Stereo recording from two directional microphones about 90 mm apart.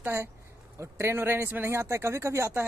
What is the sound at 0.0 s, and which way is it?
Speech, 30° right (ahead or behind).